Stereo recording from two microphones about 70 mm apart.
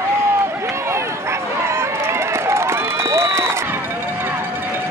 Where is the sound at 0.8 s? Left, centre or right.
Right.